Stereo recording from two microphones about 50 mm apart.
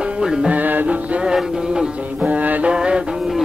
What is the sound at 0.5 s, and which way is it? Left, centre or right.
Music, right.